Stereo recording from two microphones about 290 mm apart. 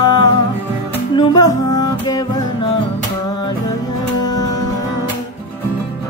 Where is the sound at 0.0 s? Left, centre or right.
Centre.